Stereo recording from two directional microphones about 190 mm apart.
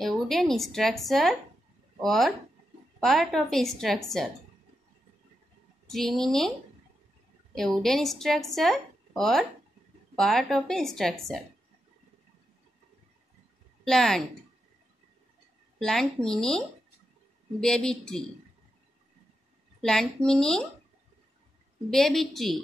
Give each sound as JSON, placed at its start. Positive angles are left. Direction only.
{"t": 0.0, "sound": "a woman's voice", "side_deg": 0}
{"t": 5.9, "sound": "a woman's voice", "side_deg": 0}
{"t": 7.5, "sound": "a woman's voice", "side_deg": 0}
{"t": 13.8, "sound": "a woman's voice", "side_deg": 0}
{"t": 15.8, "sound": "a woman's voice", "side_deg": 0}
{"t": 19.8, "sound": "a woman's voice", "side_deg": 5}
{"t": 21.9, "sound": "a woman's voice", "side_deg": 0}